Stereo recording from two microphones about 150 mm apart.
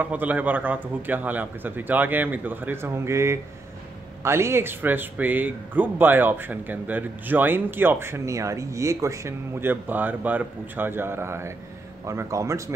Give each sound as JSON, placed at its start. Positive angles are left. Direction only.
{"t": 0.0, "sound": "speech", "side_deg": -10}